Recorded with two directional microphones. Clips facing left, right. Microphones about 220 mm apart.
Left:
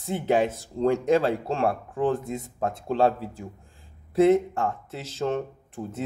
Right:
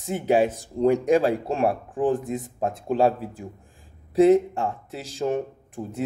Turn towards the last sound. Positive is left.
turn(degrees=-15)  # may be behind; listen again after turning